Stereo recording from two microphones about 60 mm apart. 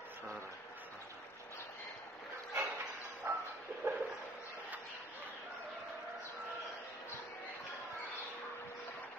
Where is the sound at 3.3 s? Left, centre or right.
Right.